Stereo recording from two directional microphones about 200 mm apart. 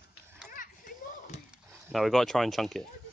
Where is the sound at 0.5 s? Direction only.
45° left (ahead or behind).